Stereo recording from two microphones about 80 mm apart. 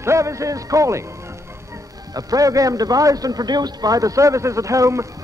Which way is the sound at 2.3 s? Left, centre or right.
Right.